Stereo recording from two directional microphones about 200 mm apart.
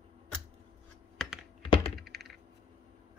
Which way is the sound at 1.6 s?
25° left (ahead or behind).